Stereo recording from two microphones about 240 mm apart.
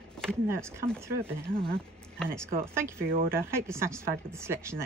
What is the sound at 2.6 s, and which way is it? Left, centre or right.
Speech, centre.